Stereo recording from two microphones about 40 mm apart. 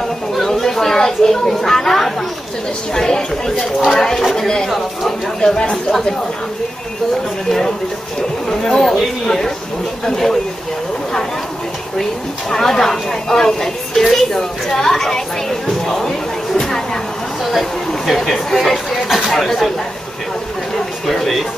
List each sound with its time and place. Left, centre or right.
0.4 s chatter: centre
2.9 s speech: centre
5.4 s speech: centre
8.5 s speech: centre
12.0 s speech: centre
17.5 s speech: centre
20.7 s a sound: centre